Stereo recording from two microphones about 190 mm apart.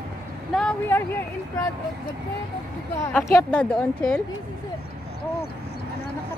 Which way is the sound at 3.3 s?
10° left (ahead or behind).